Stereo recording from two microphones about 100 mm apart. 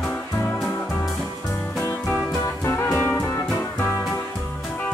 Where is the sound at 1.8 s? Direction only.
20° left (ahead or behind).